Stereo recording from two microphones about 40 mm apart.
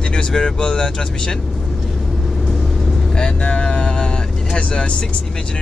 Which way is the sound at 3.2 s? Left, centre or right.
Left.